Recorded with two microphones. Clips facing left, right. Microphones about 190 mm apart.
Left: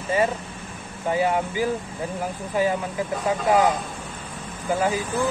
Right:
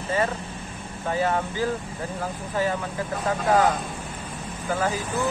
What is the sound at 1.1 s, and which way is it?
Speech, 15° left (ahead or behind).